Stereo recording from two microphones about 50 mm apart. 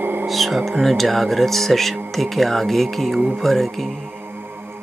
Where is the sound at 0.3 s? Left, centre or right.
Centre.